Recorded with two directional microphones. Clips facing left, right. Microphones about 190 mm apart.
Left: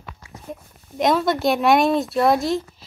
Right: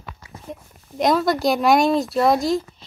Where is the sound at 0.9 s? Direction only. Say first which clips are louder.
Even; centre (ahead or behind).